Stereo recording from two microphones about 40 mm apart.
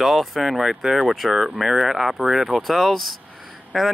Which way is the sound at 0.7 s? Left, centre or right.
Centre.